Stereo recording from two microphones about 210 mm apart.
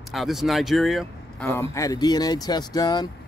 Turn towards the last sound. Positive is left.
turn(degrees=20)  # may be behind; listen again after turning